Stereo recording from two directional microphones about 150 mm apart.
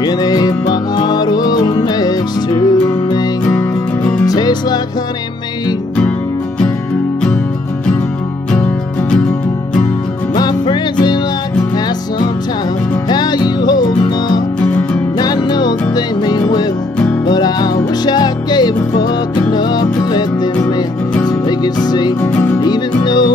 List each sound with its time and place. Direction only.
0.0 s music: 25° left (ahead or behind)
4.3 s music: 25° left (ahead or behind)
10.3 s music: 30° left (ahead or behind)
13.1 s music: 30° left (ahead or behind)
17.3 s music: 25° left (ahead or behind)
20.5 s music: 10° left (ahead or behind)
21.5 s music: 25° left (ahead or behind)
22.2 s music: 15° left (ahead or behind)
22.6 s music: 30° left (ahead or behind)